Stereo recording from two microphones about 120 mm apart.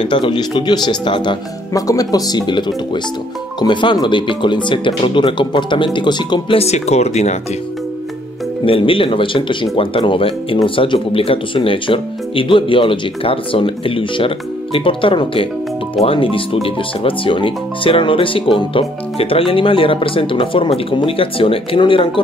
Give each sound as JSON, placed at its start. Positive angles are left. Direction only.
{"t": 0.0, "sound": "speech", "side_deg": 45}
{"t": 1.7, "sound": "speech", "side_deg": 30}
{"t": 6.6, "sound": "speech", "side_deg": 65}
{"t": 8.6, "sound": "speech", "side_deg": 50}